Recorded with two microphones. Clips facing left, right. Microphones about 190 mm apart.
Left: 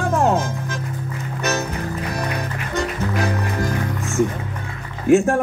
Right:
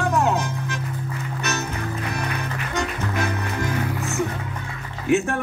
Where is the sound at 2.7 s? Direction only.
40° left (ahead or behind).